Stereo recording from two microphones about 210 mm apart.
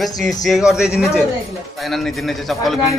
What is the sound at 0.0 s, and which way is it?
Speech, centre (ahead or behind).